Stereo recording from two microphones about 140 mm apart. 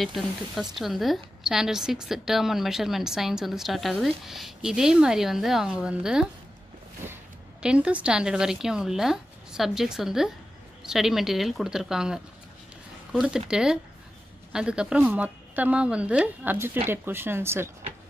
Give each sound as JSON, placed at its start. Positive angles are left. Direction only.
{"t": 0.0, "sound": "speech", "side_deg": 0}
{"t": 7.0, "sound": "a sound", "side_deg": -15}
{"t": 7.6, "sound": "speech", "side_deg": -5}
{"t": 13.2, "sound": "a woman's voice", "side_deg": -5}